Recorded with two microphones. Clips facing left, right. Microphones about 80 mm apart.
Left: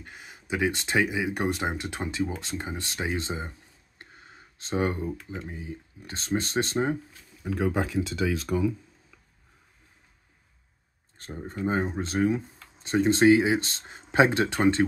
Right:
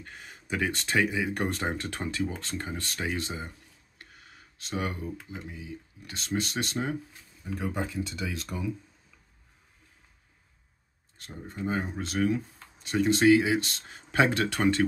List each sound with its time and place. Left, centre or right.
0.0 s speech: centre; by 7.0 s left
7.4 s speech: left
11.1 s speech: left